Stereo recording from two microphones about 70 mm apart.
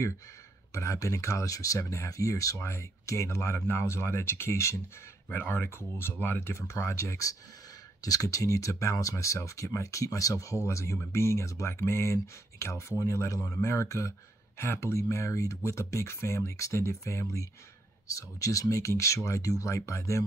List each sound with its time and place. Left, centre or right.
0.7 s speech: left
6.5 s speech: left